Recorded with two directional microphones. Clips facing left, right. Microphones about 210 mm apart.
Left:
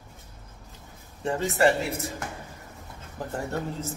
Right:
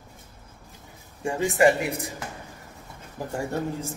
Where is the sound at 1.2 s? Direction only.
15° right (ahead or behind).